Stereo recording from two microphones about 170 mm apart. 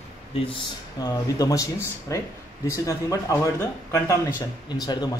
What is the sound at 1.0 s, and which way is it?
A man's voice, 20° left (ahead or behind).